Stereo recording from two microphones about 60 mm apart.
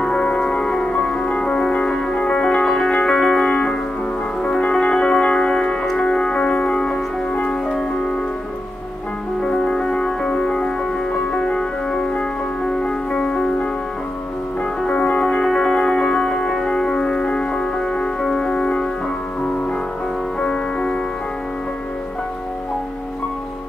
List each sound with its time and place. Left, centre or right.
0.0 s music: centre
9.4 s music: centre
14.8 s music: centre
20.3 s music: centre